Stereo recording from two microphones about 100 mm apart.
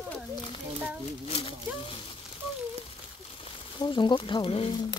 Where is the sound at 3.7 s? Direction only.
50° left (ahead or behind); by 4.7 s 70° left (ahead or behind).